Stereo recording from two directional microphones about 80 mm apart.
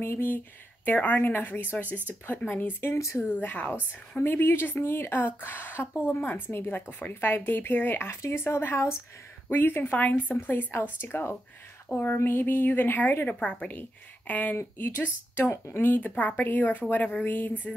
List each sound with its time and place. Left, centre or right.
0.0 s speech: left
3.3 s speech: left
13.4 s speech: centre
15.5 s speech: left
15.8 s speech: left